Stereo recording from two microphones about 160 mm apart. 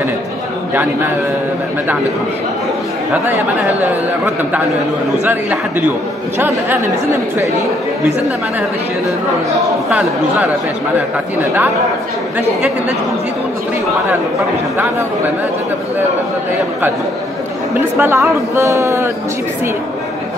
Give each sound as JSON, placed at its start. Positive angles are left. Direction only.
{"t": 5.2, "sound": "speech", "side_deg": -10}
{"t": 9.8, "sound": "speech", "side_deg": -5}
{"t": 17.7, "sound": "speech", "side_deg": -15}